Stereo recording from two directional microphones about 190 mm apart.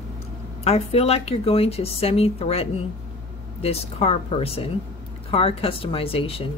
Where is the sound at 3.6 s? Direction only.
30° left (ahead or behind).